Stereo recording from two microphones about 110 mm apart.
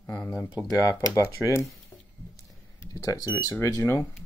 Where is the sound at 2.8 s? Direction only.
30° left (ahead or behind).